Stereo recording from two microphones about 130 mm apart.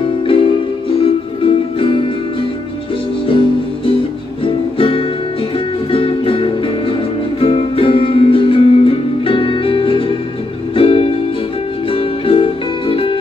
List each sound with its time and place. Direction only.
0.0 s music: 45° left (ahead or behind)
3.3 s music: 45° left (ahead or behind)